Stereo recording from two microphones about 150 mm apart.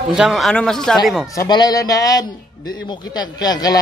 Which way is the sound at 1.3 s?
25° left (ahead or behind).